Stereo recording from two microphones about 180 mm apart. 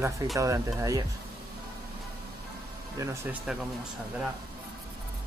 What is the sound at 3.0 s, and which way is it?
Speech, 15° right (ahead or behind).